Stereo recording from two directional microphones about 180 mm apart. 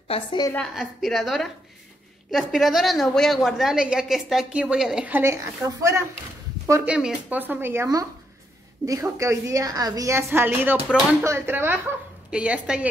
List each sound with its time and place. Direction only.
0.1 s a woman's voice: 25° left (ahead or behind)
0.7 s a woman's voice: centre (ahead or behind)